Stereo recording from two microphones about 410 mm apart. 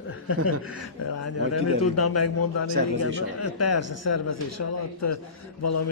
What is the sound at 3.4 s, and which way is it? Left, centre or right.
A man's voice, left.